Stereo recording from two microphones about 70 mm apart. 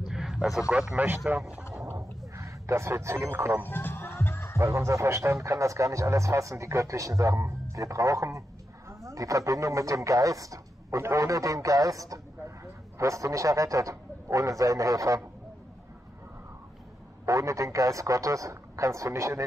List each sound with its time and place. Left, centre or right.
0.1 s speech: centre
0.9 s speech: right
1.9 s a sound: right
3.6 s music: left
4.6 s a man's voice: right
17.3 s a man's voice: right